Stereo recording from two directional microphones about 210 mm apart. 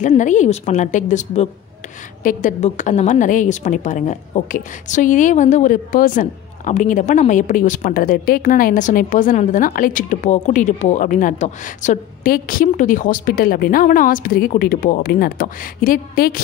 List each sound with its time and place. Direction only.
0.0 s a woman's voice: 35° left (ahead or behind)